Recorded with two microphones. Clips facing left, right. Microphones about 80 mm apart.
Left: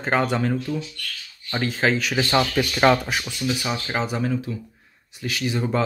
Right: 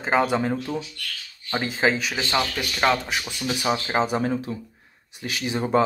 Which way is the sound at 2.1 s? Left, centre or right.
Centre.